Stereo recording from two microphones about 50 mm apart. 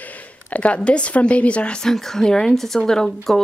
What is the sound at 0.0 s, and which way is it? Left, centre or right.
A woman's voice, left.